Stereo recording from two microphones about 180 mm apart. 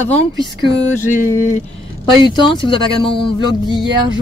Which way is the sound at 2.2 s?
25° left (ahead or behind).